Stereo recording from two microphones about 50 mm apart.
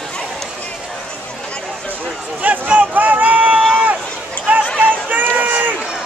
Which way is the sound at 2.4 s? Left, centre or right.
Right.